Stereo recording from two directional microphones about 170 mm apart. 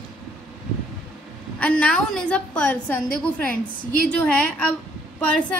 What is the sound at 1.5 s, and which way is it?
A woman's voice, 5° left (ahead or behind).